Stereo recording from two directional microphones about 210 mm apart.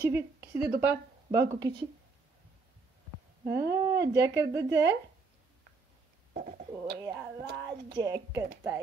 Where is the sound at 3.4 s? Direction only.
15° right (ahead or behind).